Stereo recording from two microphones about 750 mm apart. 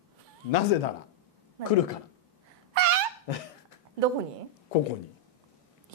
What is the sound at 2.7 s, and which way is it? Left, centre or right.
Dog, right.